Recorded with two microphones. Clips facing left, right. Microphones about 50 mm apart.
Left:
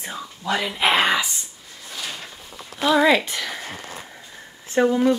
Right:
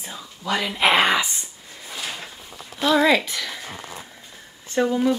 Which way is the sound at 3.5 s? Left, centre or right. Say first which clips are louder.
Left 2 dB; centre.